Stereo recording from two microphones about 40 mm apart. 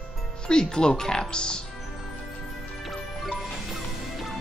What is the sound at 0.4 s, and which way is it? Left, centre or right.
Speech, left.